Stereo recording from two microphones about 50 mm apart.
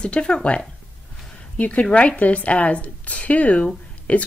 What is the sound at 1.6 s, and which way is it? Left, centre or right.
A woman's voice, left.